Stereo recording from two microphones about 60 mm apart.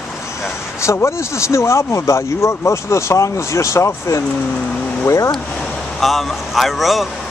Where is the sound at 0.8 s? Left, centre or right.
Left.